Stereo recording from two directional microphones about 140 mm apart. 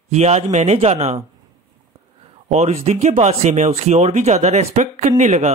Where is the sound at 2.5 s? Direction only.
50° right (ahead or behind).